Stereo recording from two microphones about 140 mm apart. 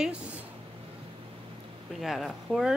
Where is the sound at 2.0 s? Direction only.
Centre (ahead or behind).